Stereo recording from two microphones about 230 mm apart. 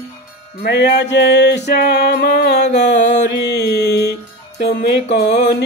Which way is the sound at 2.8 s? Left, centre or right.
Left.